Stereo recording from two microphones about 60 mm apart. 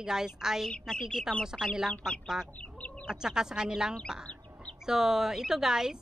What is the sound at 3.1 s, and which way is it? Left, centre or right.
A woman's voice, centre.